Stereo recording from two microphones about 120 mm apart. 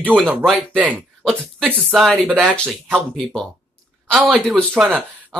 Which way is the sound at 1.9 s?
Centre (ahead or behind).